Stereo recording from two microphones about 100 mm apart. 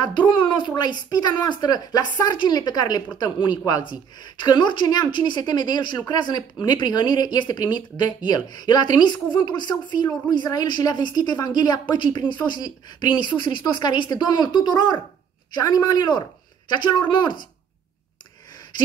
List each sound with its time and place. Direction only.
0.0 s a woman's voice: 50° left (ahead or behind)